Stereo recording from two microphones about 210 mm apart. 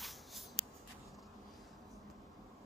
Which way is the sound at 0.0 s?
Centre (ahead or behind).